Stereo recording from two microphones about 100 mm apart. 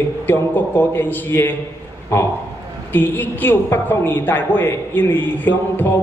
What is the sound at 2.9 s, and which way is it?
A woman's voice, 20° left (ahead or behind).